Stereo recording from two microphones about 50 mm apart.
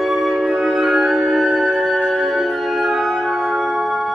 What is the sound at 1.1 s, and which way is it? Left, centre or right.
Music, centre.